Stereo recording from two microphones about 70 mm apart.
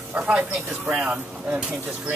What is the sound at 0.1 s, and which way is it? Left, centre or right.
Speech, centre.